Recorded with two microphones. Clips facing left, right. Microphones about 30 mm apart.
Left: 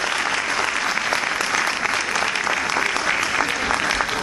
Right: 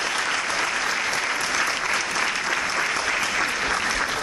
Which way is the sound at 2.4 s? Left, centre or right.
Left.